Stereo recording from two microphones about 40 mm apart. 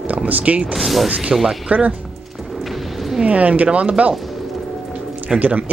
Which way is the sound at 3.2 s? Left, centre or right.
Right.